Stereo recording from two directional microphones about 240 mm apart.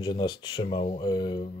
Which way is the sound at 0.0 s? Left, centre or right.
Centre.